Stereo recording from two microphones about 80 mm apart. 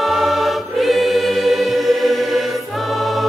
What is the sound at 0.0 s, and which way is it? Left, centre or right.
Choir, centre.